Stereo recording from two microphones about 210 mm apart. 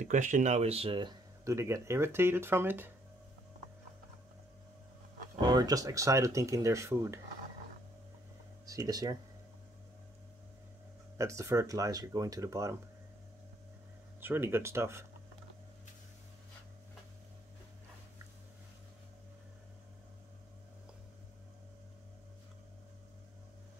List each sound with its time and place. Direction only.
0.0 s speech: 35° right (ahead or behind); by 2.9 s 10° right (ahead or behind)
5.4 s speech: 20° right (ahead or behind)
8.6 s speech: 15° right (ahead or behind)
11.1 s speech: 15° right (ahead or behind)
14.2 s speech: 10° right (ahead or behind)